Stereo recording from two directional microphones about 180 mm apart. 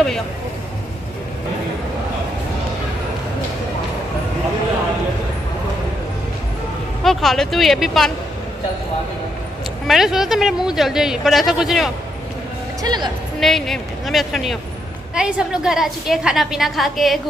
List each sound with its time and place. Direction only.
7.0 s speech: centre (ahead or behind)
9.8 s speech: centre (ahead or behind)
12.8 s a woman's voice: 25° right (ahead or behind)
13.4 s speech: centre (ahead or behind)